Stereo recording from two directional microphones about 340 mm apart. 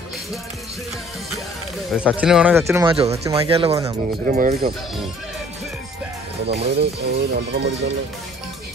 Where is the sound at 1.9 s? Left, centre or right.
Centre.